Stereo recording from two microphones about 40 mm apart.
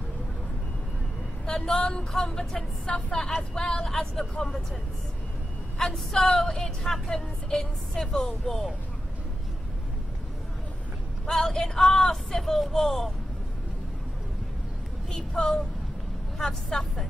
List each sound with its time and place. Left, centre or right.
1.4 s speech: centre
5.8 s speech: centre
11.2 s speech: centre
15.0 s a woman's voice: centre
16.3 s speech: centre